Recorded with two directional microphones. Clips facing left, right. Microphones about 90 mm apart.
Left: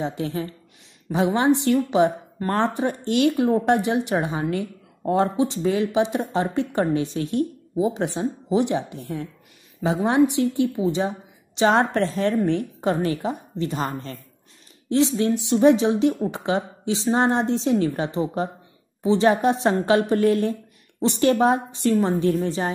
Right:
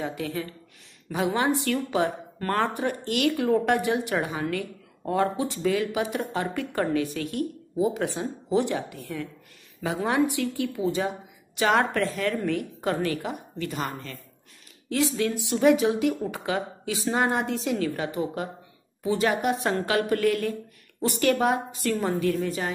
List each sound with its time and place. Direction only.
0.0 s a woman's voice: 25° left (ahead or behind)